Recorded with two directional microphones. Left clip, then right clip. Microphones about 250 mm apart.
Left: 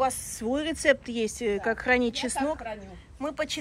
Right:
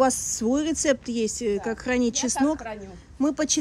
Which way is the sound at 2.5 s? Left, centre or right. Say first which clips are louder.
Right 3 dB; right.